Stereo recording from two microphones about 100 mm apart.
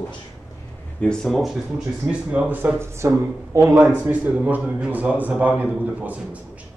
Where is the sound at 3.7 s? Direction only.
15° right (ahead or behind).